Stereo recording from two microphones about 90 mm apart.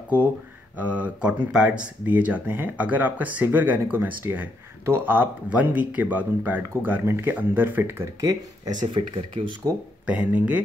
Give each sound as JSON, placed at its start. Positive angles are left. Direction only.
{"t": 0.7, "sound": "speech", "side_deg": -15}
{"t": 5.5, "sound": "speech", "side_deg": -15}
{"t": 8.2, "sound": "speech", "side_deg": -40}
{"t": 8.9, "sound": "speech", "side_deg": -65}
{"t": 10.0, "sound": "speech", "side_deg": -15}